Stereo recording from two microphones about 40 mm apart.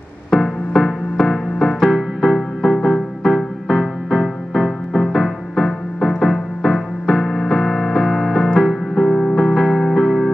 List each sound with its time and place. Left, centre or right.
0.3 s keyboard: centre
1.6 s music: centre